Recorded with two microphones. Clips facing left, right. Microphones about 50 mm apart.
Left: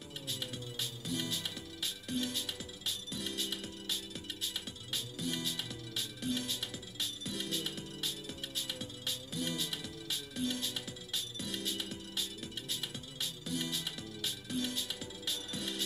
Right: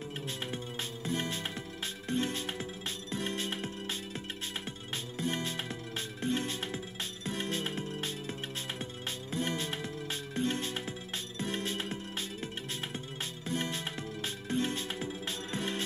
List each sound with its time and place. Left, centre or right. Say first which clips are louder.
0.3 s music: right 1 dB; right